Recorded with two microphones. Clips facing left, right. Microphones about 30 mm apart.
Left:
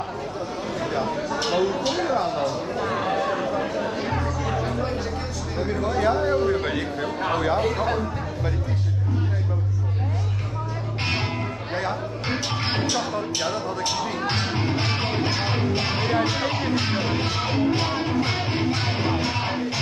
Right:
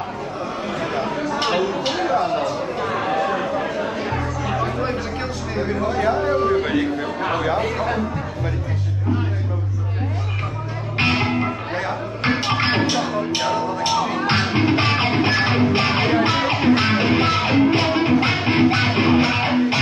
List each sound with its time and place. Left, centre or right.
1.4 s a sound: right
11.0 s music: right
13.9 s music: right
14.5 s music: right
15.8 s music: right